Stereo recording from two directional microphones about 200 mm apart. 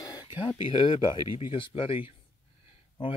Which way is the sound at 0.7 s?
25° left (ahead or behind).